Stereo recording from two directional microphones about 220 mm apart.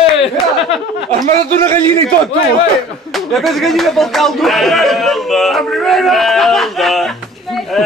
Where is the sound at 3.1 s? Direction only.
Centre (ahead or behind).